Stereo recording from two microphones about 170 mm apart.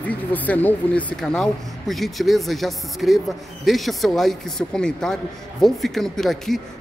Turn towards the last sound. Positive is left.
turn(degrees=0)  # may be behind; listen again after turning